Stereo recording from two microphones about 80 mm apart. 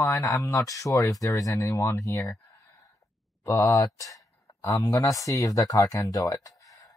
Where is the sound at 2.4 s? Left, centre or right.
Left.